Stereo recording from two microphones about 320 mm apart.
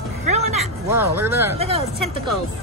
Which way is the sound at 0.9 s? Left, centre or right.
Centre.